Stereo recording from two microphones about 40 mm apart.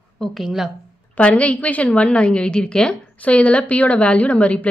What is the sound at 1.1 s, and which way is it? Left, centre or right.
A woman's voice, left.